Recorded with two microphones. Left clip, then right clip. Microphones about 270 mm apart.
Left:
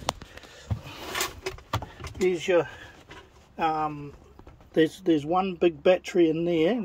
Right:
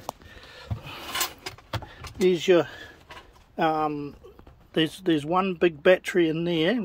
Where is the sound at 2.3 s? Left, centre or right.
Right.